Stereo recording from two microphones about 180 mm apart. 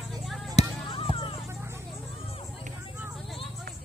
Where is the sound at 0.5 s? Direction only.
30° left (ahead or behind).